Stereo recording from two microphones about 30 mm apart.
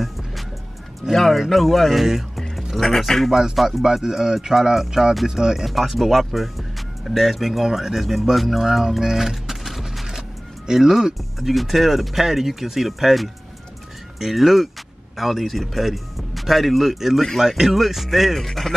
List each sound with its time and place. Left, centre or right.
1.1 s speech: centre
2.5 s music: centre
3.3 s speech: centre
5.7 s speech: centre
8.6 s speech: centre
9.0 s music: centre
10.7 s speech: centre
11.3 s speech: centre
18.3 s speech: centre